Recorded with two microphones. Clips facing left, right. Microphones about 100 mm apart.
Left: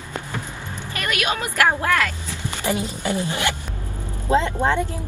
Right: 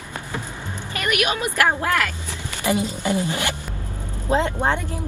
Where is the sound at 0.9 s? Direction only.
20° right (ahead or behind).